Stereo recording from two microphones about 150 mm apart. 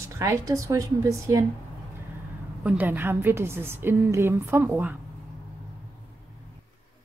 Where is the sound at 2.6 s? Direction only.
10° right (ahead or behind).